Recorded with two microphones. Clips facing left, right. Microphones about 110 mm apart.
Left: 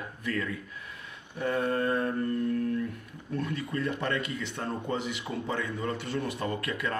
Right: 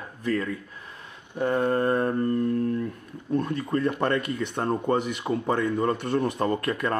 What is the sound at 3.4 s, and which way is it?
Speech, 45° right (ahead or behind).